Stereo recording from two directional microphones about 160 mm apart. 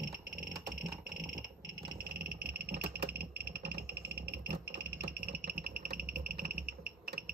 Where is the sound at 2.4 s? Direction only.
80° right.